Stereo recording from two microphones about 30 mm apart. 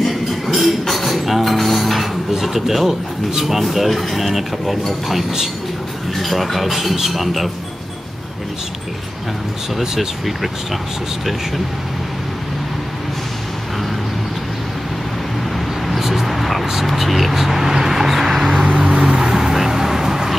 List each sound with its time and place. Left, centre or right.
0.1 s music: centre
1.4 s dishes: centre
2.4 s speech: centre
6.1 s speech: centre
9.8 s speech: centre
15.5 s vehicle: centre